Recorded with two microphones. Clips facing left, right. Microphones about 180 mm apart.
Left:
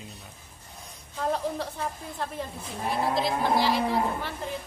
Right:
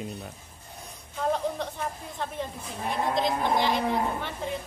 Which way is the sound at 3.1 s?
5° left (ahead or behind).